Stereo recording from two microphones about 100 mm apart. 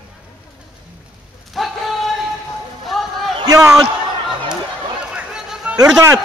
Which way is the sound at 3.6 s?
30° right (ahead or behind).